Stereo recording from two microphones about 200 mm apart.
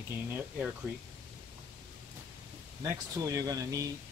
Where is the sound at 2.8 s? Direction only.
15° right (ahead or behind).